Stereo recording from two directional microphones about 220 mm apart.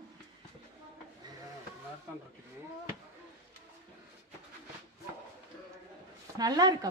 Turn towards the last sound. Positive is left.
turn(degrees=-20)  # may be behind; listen again after turning